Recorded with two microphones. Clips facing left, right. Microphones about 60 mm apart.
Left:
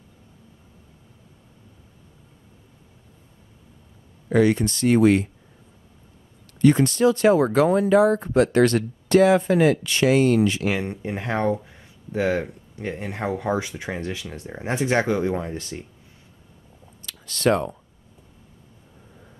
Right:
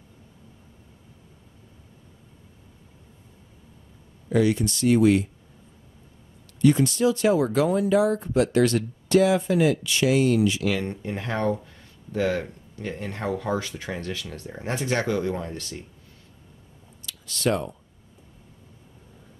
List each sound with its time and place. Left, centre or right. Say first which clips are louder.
4.3 s speech: left 3 dB; left
6.6 s speech: left 3 dB; left
10.7 s speech: left 1 dB; left
17.0 s speech: left 4 dB; left